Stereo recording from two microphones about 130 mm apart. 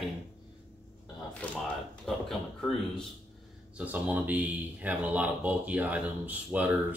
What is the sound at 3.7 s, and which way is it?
Speech, 10° right (ahead or behind).